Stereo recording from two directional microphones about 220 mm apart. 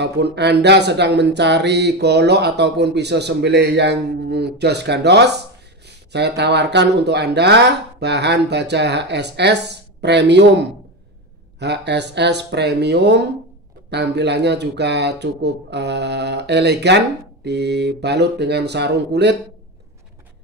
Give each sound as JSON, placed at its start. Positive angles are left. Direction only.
{"t": 0.0, "sound": "speech", "side_deg": -50}
{"t": 11.6, "sound": "speech", "side_deg": -50}